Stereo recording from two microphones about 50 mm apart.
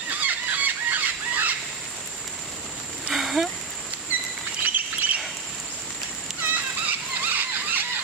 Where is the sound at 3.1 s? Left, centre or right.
Centre.